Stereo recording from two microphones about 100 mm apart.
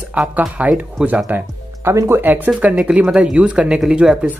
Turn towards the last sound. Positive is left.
turn(degrees=-10)  # may be behind; listen again after turning